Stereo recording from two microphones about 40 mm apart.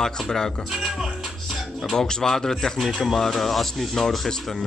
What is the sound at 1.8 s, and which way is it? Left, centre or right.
Speech, centre.